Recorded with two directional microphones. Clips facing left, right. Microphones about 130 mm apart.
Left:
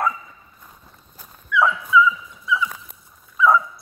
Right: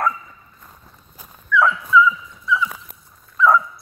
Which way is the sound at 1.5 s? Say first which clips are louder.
Right 2 dB; 15° left (ahead or behind).